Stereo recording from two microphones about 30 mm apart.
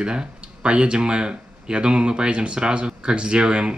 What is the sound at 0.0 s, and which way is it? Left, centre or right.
Speech, right.